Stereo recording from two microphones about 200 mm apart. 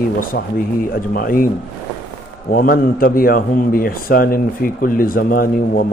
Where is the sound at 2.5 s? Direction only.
45° left (ahead or behind).